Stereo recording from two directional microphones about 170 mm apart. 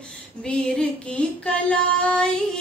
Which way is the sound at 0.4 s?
5° left (ahead or behind).